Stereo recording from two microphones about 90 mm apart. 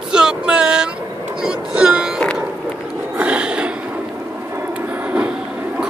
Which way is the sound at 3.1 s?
15° right (ahead or behind).